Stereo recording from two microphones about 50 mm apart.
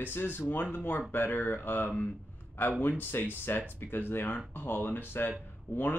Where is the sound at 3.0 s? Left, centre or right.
Left.